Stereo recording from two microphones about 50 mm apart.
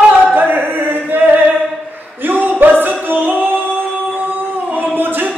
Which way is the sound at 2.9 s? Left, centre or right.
Right.